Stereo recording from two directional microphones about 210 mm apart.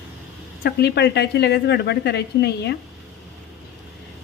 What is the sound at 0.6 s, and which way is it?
A woman's voice, 50° left (ahead or behind).